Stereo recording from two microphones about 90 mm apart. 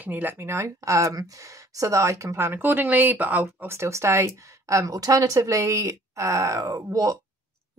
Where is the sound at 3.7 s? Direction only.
30° right (ahead or behind).